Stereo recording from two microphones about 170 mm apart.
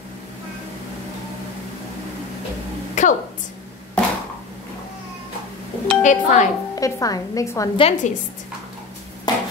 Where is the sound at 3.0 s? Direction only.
45° left (ahead or behind).